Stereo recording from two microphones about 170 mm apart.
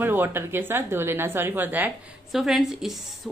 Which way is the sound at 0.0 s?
10° right (ahead or behind).